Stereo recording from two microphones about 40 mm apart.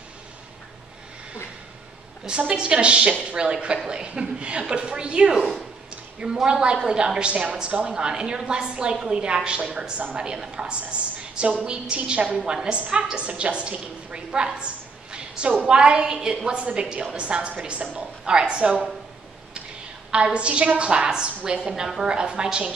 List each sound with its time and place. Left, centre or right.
2.2 s a woman's voice: right
20.1 s a woman's voice: right